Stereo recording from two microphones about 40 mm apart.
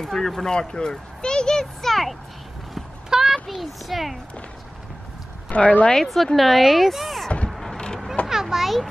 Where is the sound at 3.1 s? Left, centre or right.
Centre.